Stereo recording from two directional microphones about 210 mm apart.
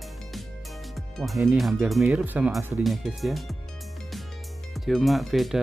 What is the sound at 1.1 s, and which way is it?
Speech, centre (ahead or behind).